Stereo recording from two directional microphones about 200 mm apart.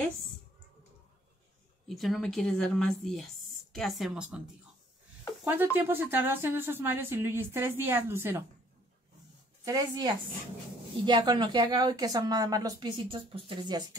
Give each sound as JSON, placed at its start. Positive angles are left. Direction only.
{"t": 1.9, "sound": "a woman's voice", "side_deg": 0}
{"t": 5.4, "sound": "speech", "side_deg": -10}
{"t": 9.7, "sound": "a woman's voice", "side_deg": -20}